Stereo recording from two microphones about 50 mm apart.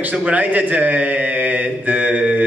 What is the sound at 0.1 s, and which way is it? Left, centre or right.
Speech, right.